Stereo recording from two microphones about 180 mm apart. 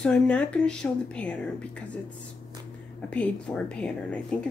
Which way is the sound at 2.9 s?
5° left (ahead or behind).